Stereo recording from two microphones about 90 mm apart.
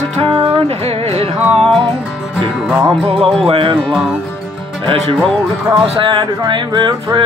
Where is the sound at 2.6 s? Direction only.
10° right (ahead or behind).